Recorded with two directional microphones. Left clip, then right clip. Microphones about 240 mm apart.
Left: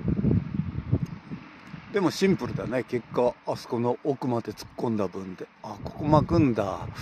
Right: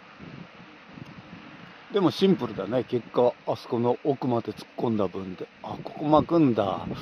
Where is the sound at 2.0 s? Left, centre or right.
Centre.